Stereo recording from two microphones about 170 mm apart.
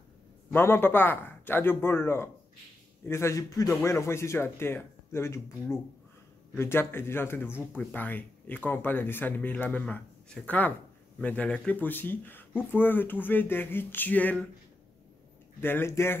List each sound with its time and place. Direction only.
0.5 s speech: 15° left (ahead or behind)
15.6 s speech: 15° left (ahead or behind)